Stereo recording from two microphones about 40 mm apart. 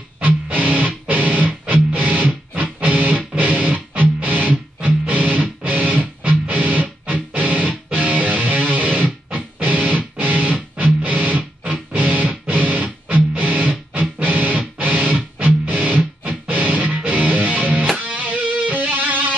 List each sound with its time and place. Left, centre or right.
0.2 s music: right